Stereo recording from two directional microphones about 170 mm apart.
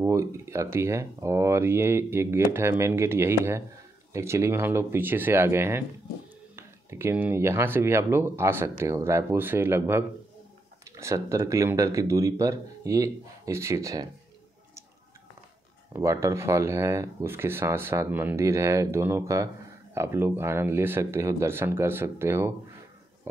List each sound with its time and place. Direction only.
0.0 s speech: 15° right (ahead or behind)
15.9 s speech: 15° right (ahead or behind)